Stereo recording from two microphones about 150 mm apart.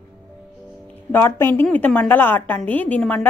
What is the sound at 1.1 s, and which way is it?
A woman's voice, 15° left (ahead or behind).